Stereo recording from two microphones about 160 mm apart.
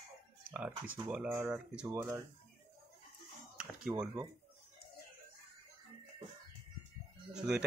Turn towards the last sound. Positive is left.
turn(degrees=-5)  # may be behind; listen again after turning